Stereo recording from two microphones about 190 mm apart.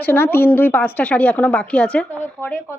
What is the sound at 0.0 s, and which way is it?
A woman's voice, 10° left (ahead or behind).